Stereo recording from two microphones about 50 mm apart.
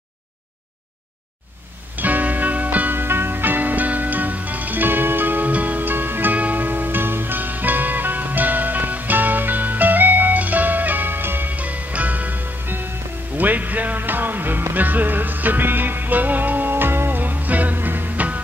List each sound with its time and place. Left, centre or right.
2.0 s music: right
5.5 s music: right
11.5 s music: right